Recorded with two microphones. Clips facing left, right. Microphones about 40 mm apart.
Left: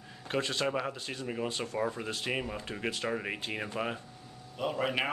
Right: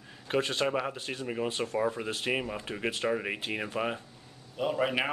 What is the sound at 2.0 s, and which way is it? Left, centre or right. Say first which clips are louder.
Speech: right 3 dB; right.